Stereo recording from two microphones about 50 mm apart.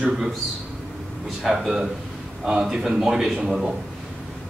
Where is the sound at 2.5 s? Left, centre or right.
Centre.